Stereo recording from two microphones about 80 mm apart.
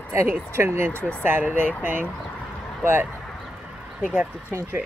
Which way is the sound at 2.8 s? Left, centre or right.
Right.